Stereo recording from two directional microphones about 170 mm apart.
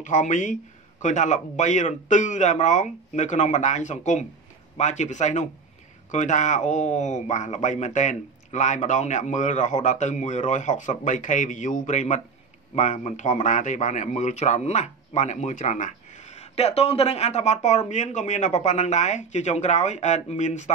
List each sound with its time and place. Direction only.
0.0 s speech: 45° left (ahead or behind)
16.5 s speech: 40° left (ahead or behind)